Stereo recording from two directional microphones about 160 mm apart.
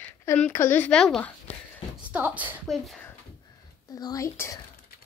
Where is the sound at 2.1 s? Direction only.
10° right (ahead or behind).